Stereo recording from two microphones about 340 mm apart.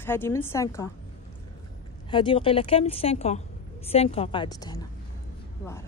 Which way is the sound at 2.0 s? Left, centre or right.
Centre.